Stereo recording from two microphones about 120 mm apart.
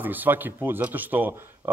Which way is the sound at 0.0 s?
15° right (ahead or behind).